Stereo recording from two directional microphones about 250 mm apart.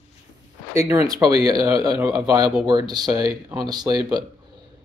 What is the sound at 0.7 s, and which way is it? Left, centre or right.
Speech, centre.